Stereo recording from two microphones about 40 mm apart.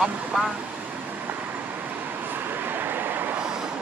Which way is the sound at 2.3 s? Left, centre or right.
Right.